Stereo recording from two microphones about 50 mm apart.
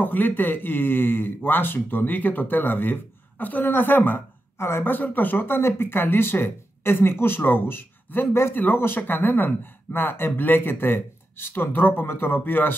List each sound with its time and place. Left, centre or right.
0.0 s speech: left
4.6 s a woman's voice: left
4.8 s speech: left
5.6 s speech: left